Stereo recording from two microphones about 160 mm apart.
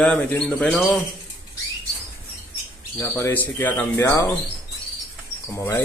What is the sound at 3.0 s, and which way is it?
Speech, 15° left (ahead or behind).